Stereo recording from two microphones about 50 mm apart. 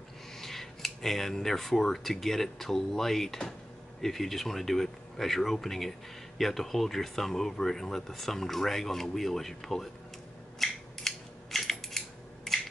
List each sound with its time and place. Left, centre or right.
0.4 s speech: centre
10.6 s scissors: centre
12.5 s crushing: centre